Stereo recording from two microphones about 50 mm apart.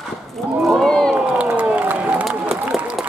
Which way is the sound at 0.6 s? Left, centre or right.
Centre.